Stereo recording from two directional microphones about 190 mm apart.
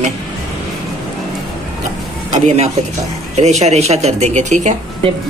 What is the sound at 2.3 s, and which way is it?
Speech, 35° right (ahead or behind).